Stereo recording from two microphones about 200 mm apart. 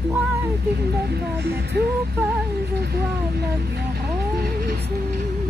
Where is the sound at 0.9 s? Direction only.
55° right (ahead or behind).